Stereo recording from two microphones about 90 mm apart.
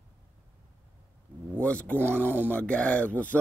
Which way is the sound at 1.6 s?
15° left (ahead or behind).